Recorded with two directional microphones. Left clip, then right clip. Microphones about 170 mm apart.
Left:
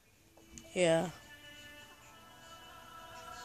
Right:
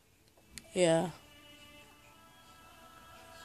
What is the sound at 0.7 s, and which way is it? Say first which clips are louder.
Speech: right 1 dB; 35° right (ahead or behind).